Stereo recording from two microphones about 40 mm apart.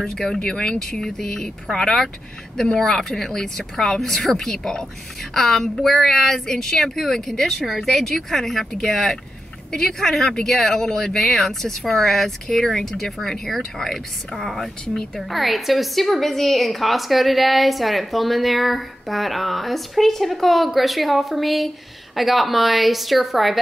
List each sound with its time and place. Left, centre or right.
0.0 s a woman's voice: centre